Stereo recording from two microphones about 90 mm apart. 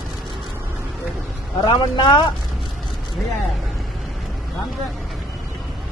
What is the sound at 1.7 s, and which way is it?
Speech, 55° left (ahead or behind).